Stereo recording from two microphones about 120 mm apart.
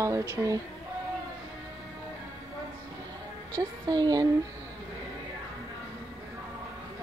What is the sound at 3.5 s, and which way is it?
Speech, 35° right (ahead or behind).